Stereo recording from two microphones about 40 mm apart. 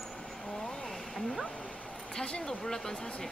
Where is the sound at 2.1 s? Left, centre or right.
Left.